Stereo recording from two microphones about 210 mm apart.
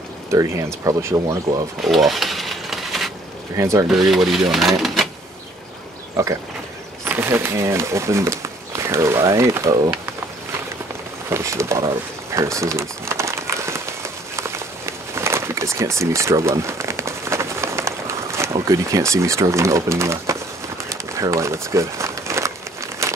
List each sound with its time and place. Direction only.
0.3 s speech: 15° right (ahead or behind)
1.8 s a sound: centre (ahead or behind)
3.5 s speech: 15° right (ahead or behind)
3.9 s speech: centre (ahead or behind)
6.2 s speech: 15° right (ahead or behind)
11.2 s speech: 15° right (ahead or behind)
12.4 s crumpling: 15° right (ahead or behind)